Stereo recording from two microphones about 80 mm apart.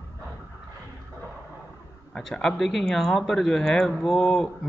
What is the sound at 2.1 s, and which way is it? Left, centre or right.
A man's voice, centre.